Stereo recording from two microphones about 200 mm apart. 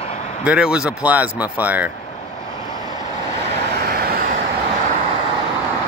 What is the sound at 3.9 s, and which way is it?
Vehicle, 50° right (ahead or behind).